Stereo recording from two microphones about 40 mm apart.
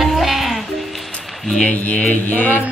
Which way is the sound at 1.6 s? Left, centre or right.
Left.